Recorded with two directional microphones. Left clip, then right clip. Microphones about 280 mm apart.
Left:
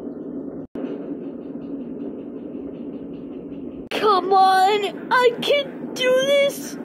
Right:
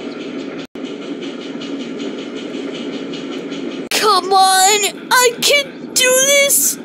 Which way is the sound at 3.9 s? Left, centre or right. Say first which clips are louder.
Right 4 dB; centre.